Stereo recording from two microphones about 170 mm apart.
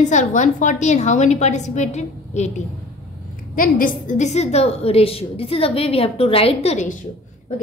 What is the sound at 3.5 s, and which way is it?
A woman's voice, 50° left (ahead or behind).